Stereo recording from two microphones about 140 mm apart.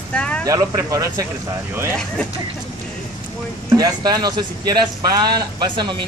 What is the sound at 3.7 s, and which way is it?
Speech, 30° right (ahead or behind).